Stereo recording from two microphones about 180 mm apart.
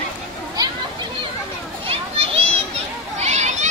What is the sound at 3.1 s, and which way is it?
Children playing, 40° right (ahead or behind).